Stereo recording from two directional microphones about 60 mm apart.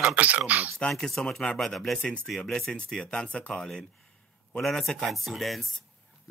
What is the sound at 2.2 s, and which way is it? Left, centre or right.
Speech, centre.